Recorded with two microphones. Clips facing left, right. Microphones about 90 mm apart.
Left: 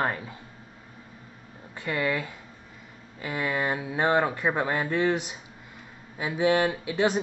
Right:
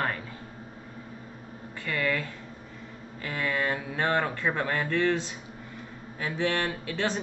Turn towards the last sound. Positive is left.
turn(degrees=15)  # may be behind; listen again after turning